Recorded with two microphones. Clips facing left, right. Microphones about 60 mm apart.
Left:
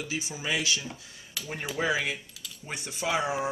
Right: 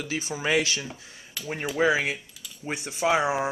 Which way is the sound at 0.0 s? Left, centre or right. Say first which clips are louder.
Right 5 dB; right.